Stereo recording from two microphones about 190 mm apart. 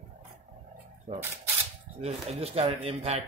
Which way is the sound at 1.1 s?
40° right (ahead or behind).